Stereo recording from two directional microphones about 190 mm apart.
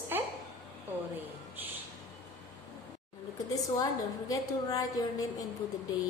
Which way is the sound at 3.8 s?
20° left (ahead or behind).